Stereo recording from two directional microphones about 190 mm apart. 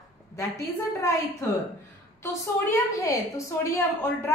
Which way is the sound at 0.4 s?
15° left (ahead or behind).